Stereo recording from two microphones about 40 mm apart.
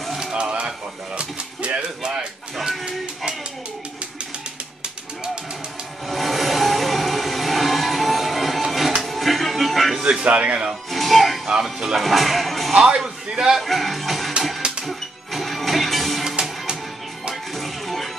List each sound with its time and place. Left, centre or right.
0.2 s a sound: right
6.0 s music: centre
10.2 s speech: right
10.9 s music: centre
11.6 s speech: centre
12.8 s a man's voice: centre
13.6 s music: centre
16.3 s music: centre
17.3 s music: centre